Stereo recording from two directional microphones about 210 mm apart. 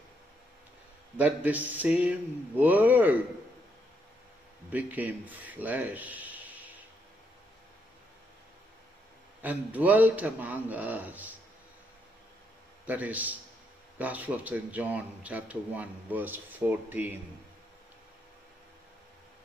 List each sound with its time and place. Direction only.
1.1 s a man's voice: 10° right (ahead or behind)
4.7 s a man's voice: 10° right (ahead or behind)
9.4 s a man's voice: 10° right (ahead or behind)
12.8 s a man's voice: 10° right (ahead or behind)